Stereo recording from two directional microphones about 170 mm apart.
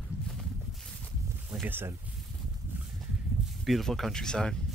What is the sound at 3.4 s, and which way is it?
Speech, centre (ahead or behind).